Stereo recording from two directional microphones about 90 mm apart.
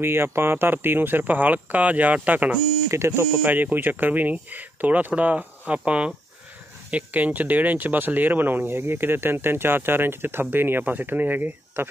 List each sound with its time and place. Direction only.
0.0 s speech: 25° right (ahead or behind)
2.9 s speech: 30° right (ahead or behind)